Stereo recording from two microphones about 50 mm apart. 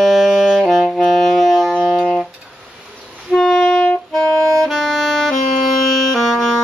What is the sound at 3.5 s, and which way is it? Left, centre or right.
Music, left.